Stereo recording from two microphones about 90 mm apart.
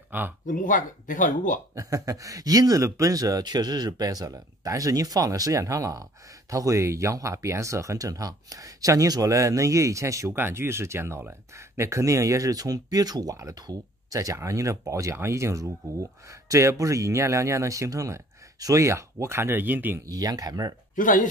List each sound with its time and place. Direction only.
0.1 s speech: 20° right (ahead or behind)
1.8 s speech: 40° right (ahead or behind); by 20.0 s 20° right (ahead or behind)
20.1 s speech: 40° right (ahead or behind)